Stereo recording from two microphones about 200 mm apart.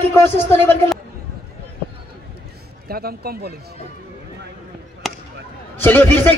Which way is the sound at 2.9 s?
50° right (ahead or behind).